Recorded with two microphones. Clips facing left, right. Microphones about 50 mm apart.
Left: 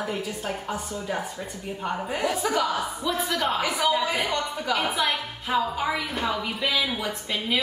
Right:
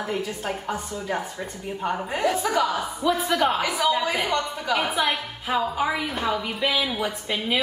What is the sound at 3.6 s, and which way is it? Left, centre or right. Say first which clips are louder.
Speech: right 1 dB; centre.